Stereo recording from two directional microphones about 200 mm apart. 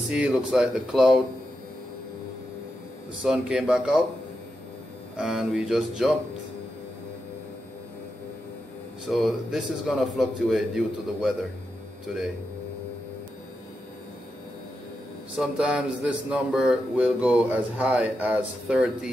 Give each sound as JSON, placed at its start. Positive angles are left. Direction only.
{"t": 0.1, "sound": "speech", "side_deg": -5}
{"t": 3.2, "sound": "speech", "side_deg": -5}
{"t": 5.1, "sound": "speech", "side_deg": -5}
{"t": 9.1, "sound": "speech", "side_deg": 0}
{"t": 15.3, "sound": "speech", "side_deg": -5}